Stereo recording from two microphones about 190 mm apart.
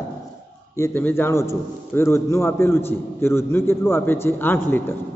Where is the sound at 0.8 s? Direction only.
10° left (ahead or behind).